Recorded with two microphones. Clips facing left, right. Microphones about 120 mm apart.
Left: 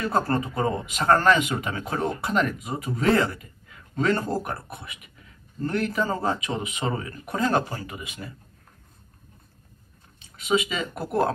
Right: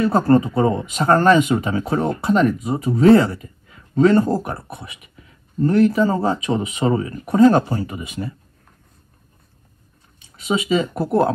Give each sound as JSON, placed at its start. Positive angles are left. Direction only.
{"t": 0.0, "sound": "speech", "side_deg": -30}
{"t": 10.4, "sound": "speech", "side_deg": -30}